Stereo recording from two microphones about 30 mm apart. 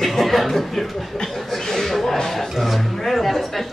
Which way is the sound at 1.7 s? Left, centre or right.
Centre.